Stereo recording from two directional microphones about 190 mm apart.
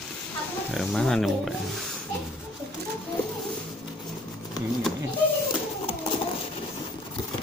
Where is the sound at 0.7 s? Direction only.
Centre (ahead or behind).